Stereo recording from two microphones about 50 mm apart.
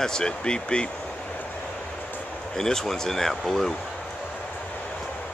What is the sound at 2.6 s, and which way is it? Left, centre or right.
Speech, centre.